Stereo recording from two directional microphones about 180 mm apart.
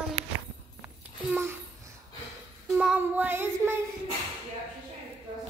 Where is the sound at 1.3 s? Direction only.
10° right (ahead or behind).